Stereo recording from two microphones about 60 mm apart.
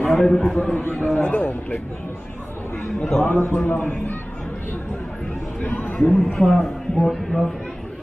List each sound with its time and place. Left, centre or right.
0.2 s a man's voice: centre
0.7 s a man's voice: left
3.2 s a man's voice: left
5.6 s a man's voice: left
5.9 s a man's voice: centre